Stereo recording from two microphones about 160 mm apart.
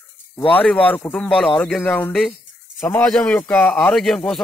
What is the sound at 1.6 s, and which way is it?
Speech, centre (ahead or behind).